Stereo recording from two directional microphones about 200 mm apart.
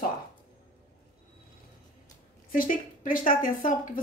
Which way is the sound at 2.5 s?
45° left (ahead or behind).